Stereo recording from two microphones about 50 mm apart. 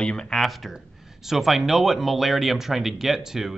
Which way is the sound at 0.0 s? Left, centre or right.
Centre.